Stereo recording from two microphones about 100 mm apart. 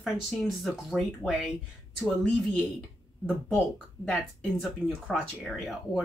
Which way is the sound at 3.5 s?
Centre (ahead or behind).